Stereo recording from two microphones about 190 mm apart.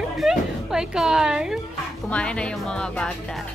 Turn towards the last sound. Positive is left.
turn(degrees=5)  # may be behind; listen again after turning